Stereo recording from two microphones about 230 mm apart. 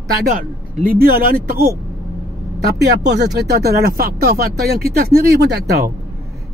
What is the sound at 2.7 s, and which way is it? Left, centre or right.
Speech, right.